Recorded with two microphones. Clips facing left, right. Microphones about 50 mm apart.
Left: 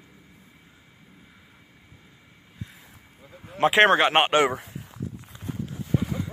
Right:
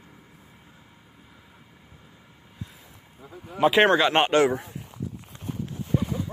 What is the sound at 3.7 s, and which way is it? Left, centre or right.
Speech, left.